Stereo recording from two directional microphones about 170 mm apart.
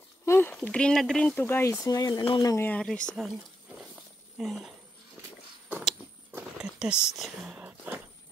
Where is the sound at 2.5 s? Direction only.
10° left (ahead or behind).